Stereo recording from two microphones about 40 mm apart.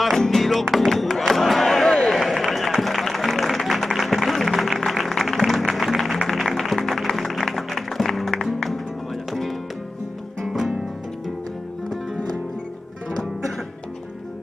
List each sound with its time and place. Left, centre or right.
0.0 s music: centre
0.8 s battle cry: centre
1.9 s a sound: left
2.1 s run: centre
2.8 s music: centre
10.7 s music: centre